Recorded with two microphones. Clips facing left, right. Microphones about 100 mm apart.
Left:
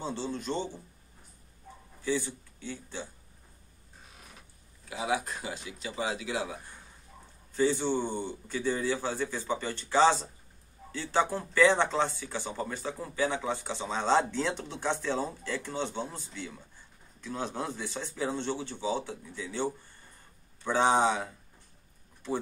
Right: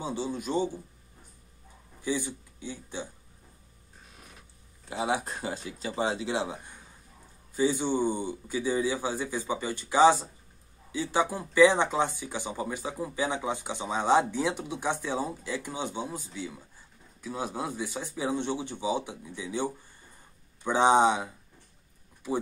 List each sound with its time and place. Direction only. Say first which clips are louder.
0.0 s speech: right 2 dB; 10° right (ahead or behind)
2.0 s speech: even; 15° right (ahead or behind)
4.8 s speech: right 2 dB; 30° right (ahead or behind)
7.5 s speech: right 1 dB; 10° right (ahead or behind)